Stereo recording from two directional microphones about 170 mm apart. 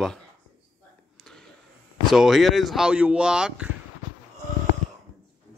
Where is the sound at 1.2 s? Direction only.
5° left (ahead or behind).